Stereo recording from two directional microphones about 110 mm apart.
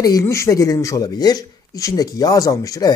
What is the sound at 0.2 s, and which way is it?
Speech, 25° left (ahead or behind).